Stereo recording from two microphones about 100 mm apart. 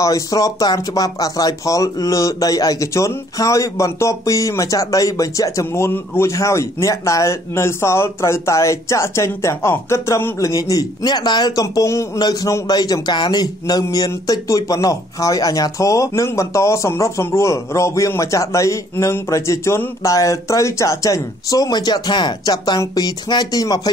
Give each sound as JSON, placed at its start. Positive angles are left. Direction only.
{"t": 0.0, "sound": "speech", "side_deg": 35}
{"t": 11.6, "sound": "speech", "side_deg": 30}